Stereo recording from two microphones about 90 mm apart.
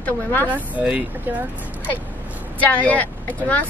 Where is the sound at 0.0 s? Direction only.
20° left (ahead or behind).